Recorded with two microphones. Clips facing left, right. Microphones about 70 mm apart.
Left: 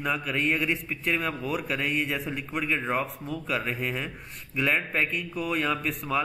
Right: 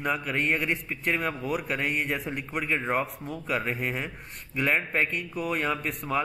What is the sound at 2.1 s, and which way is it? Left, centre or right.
Speech, centre.